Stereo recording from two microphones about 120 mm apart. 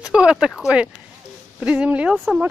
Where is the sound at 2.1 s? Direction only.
Centre (ahead or behind).